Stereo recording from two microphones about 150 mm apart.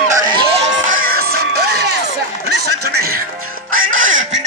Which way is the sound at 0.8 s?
70° right (ahead or behind).